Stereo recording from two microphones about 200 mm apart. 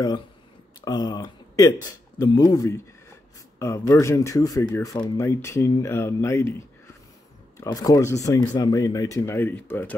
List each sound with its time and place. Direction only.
0.8 s speech: 20° left (ahead or behind)
7.5 s speech: 15° left (ahead or behind)